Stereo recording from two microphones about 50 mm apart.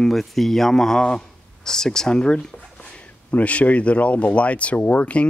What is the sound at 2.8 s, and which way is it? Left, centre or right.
Speech, left.